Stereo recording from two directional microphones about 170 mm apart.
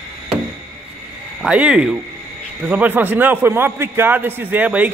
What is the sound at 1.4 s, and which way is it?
A man's voice, 5° right (ahead or behind).